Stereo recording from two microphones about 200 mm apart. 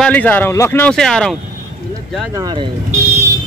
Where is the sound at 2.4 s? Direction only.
20° right (ahead or behind).